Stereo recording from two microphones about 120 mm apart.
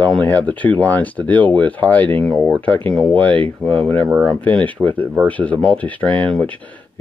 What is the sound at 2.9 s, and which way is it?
Speech, centre (ahead or behind).